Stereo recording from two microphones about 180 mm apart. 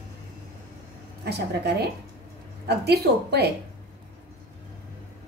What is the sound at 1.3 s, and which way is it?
A woman's voice, 65° right (ahead or behind).